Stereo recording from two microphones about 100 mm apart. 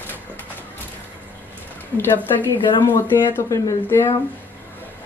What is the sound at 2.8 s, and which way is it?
Speech, 20° left (ahead or behind).